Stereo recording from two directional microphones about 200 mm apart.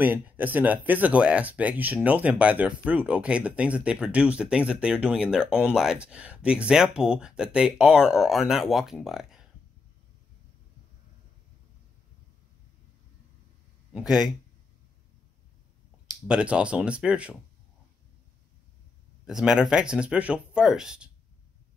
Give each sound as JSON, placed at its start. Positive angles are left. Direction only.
{"t": 0.0, "sound": "speech", "side_deg": -10}
{"t": 13.9, "sound": "speech", "side_deg": 0}
{"t": 16.3, "sound": "speech", "side_deg": -5}
{"t": 19.2, "sound": "speech", "side_deg": -5}